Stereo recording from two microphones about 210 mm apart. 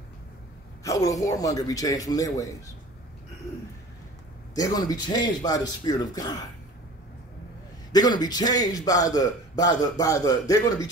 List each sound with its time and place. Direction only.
0.8 s a man's voice: 15° left (ahead or behind)
4.6 s speech: 20° left (ahead or behind)
7.9 s a man's voice: 20° left (ahead or behind)